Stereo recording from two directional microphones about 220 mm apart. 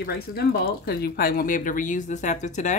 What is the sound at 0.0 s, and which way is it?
Speech, 45° left (ahead or behind).